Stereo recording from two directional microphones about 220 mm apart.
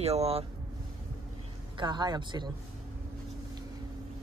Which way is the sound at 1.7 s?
20° right (ahead or behind).